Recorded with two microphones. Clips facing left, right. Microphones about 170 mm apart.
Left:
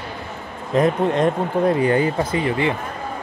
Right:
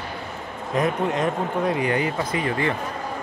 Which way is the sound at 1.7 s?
30° left (ahead or behind).